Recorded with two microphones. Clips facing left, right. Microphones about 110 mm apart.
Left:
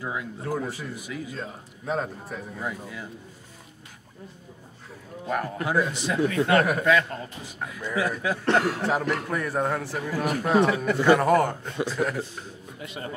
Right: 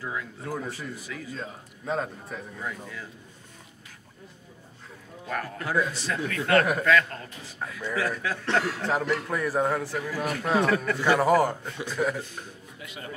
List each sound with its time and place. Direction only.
0.0 s a sound: 20° left (ahead or behind)
0.4 s a man's voice: 5° left (ahead or behind)
1.3 s a man's voice: 5° left (ahead or behind)
2.6 s speech: 15° left (ahead or behind)
5.2 s speech: 20° left (ahead or behind)
8.5 s speech: 50° left (ahead or behind)
8.8 s a man's voice: 5° left (ahead or behind)
9.9 s speech: 15° left (ahead or behind)
11.1 s a man's voice: 5° right (ahead or behind)
12.8 s speech: 25° left (ahead or behind)